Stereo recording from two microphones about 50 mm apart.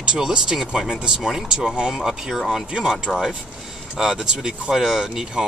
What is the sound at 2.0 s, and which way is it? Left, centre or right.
Speech, centre.